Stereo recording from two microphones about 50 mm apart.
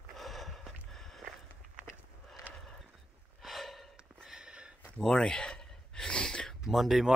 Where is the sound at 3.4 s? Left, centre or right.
Centre.